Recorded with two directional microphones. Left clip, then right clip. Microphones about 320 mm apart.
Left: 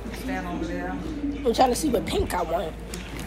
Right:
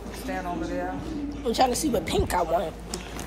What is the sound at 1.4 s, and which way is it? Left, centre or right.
A woman's voice, centre.